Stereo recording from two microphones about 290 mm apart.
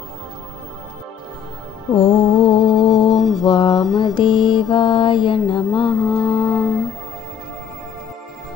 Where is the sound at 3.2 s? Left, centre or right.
Centre.